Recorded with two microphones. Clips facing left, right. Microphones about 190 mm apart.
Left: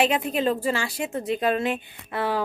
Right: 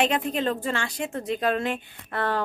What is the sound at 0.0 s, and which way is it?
A woman's voice, 5° left (ahead or behind).